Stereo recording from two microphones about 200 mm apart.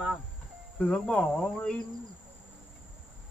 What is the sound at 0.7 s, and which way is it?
Cricket, 5° left (ahead or behind).